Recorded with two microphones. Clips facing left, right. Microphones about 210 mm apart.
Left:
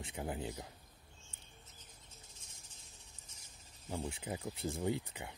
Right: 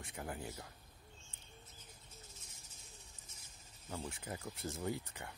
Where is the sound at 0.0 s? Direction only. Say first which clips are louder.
Left 4 dB; 15° left (ahead or behind).